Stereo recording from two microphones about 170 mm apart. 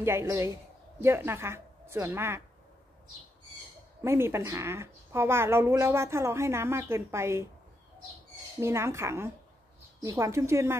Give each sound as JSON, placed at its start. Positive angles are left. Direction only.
{"t": 0.0, "sound": "a woman's voice", "side_deg": -15}
{"t": 4.0, "sound": "a woman's voice", "side_deg": -15}
{"t": 8.5, "sound": "a woman's voice", "side_deg": -15}